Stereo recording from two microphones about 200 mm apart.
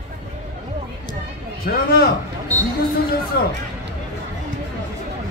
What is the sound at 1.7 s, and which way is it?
Speech, 50° left (ahead or behind).